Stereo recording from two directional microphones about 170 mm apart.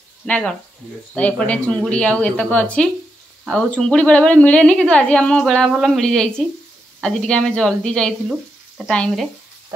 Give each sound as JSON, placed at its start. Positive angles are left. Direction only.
{"t": 0.3, "sound": "a woman's voice", "side_deg": 5}